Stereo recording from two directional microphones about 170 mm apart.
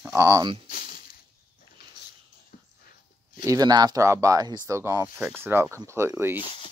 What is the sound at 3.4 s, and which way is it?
Speech, 20° right (ahead or behind).